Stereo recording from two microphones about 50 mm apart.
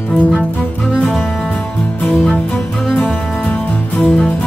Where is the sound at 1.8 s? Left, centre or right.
Left.